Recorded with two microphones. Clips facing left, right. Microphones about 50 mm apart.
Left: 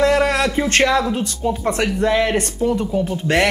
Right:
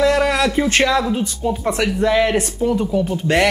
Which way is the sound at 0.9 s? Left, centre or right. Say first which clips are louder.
Even; centre.